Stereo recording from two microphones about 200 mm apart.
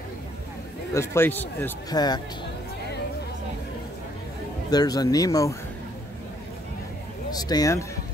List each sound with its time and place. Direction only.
0.9 s speech: 10° left (ahead or behind)
1.9 s speech: 20° left (ahead or behind)
4.6 s speech: 20° left (ahead or behind)
7.2 s speech: 20° left (ahead or behind)